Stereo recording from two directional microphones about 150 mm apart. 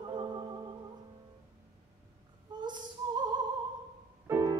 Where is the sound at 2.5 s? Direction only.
30° right (ahead or behind).